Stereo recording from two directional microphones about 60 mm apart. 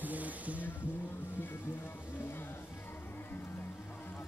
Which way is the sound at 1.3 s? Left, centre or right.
Left.